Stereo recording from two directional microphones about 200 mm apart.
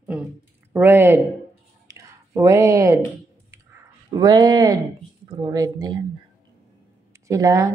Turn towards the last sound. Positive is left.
turn(degrees=-15)  # may be behind; listen again after turning